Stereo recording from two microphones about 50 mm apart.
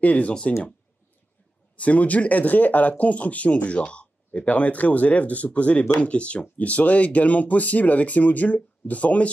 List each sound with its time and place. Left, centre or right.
0.0 s speech: left
0.3 s speech: centre
1.8 s speech: left